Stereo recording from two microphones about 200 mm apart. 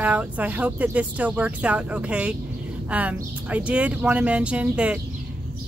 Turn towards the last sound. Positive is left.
turn(degrees=-5)  # may be behind; listen again after turning